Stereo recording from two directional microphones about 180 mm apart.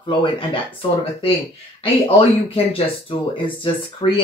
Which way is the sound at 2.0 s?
30° left (ahead or behind).